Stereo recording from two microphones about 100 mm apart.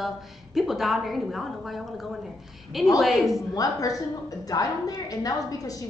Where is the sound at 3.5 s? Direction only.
35° left (ahead or behind).